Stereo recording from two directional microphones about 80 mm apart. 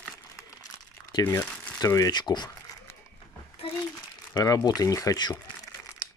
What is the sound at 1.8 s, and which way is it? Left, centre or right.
Speech, left.